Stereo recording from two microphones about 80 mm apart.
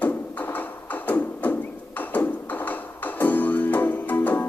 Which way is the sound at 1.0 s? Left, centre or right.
Left.